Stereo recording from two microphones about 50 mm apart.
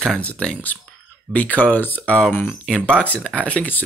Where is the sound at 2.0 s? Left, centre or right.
Left.